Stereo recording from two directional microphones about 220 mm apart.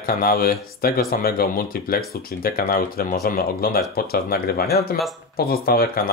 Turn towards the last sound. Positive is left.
turn(degrees=45)  # may be behind; listen again after turning